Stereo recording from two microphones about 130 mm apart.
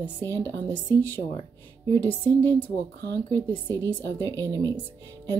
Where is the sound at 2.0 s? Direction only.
15° left (ahead or behind).